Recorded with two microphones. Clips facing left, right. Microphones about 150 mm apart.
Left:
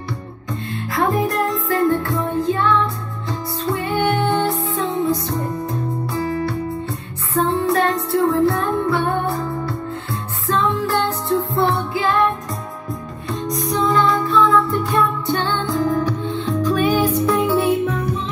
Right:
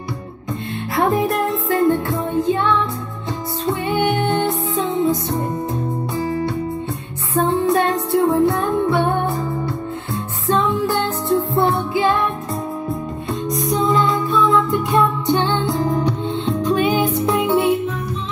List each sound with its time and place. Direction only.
0.9 s music: 25° right (ahead or behind)
10.4 s music: 20° right (ahead or behind)
13.3 s music: centre (ahead or behind)
13.8 s music: 20° right (ahead or behind)